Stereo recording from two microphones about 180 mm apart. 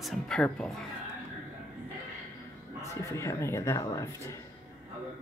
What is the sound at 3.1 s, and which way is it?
Speech, 15° left (ahead or behind).